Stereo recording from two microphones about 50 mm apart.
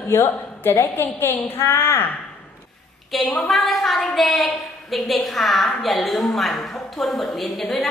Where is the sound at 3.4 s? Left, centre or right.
Centre.